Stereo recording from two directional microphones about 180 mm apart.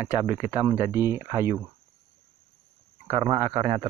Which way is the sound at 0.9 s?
15° right (ahead or behind).